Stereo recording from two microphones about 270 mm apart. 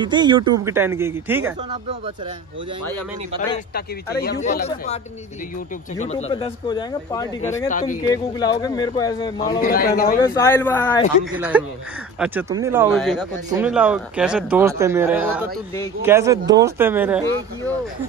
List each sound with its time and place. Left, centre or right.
0.0 s speech: centre
3.3 s speech: left; by 9.6 s centre
9.6 s a man's voice: left
10.3 s speech: centre
11.3 s a man's voice: centre